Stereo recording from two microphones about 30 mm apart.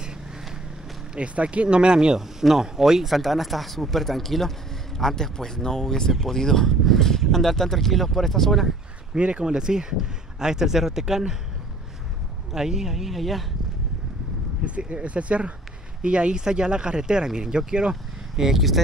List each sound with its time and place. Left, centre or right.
1.1 s speech: right
2.1 s speech: centre
9.1 s speech: right
9.5 s speech: right
12.5 s speech: centre
12.9 s speech: centre
14.9 s speech: right
16.0 s speech: right
18.3 s speech: centre